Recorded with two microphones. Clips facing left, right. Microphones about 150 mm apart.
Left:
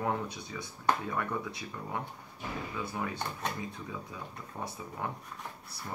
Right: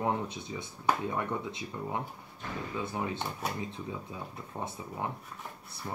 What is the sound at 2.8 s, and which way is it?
Speech, 20° right (ahead or behind).